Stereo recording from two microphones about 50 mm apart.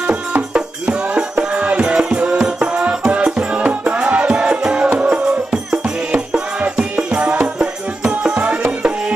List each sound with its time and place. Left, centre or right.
0.0 s music: right